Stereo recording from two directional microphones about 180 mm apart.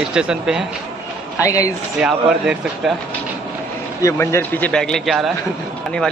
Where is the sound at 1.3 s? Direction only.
15° left (ahead or behind).